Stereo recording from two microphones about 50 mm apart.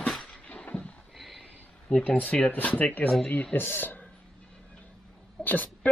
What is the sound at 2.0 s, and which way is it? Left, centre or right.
Speech, left.